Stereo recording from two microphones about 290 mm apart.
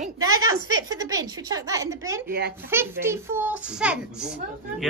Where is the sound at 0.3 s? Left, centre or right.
Right.